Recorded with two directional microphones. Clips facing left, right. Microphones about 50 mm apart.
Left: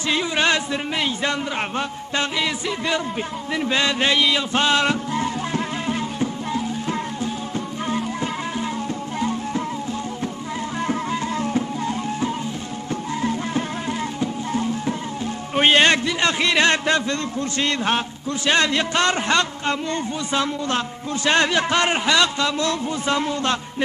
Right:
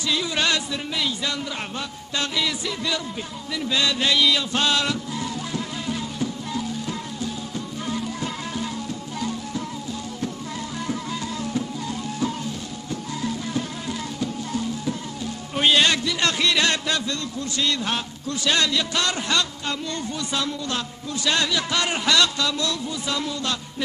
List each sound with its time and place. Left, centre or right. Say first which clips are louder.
0.1 s a man's voice: left 4 dB; left
3.5 s music: left 3 dB; left
10.9 s music: left 5 dB; left
16.2 s a man's voice: left 3 dB; left